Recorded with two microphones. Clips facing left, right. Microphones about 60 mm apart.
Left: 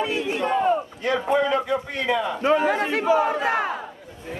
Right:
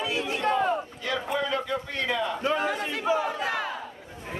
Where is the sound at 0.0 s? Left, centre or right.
Left.